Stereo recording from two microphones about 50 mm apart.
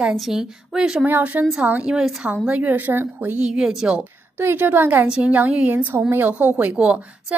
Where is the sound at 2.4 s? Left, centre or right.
Right.